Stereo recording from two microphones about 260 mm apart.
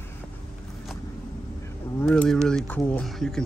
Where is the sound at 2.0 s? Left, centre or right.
Centre.